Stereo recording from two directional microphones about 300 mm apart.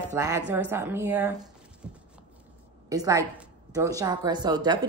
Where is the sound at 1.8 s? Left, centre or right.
Centre.